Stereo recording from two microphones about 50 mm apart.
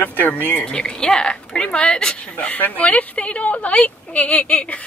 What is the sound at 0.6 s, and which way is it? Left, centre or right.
A woman's voice, centre.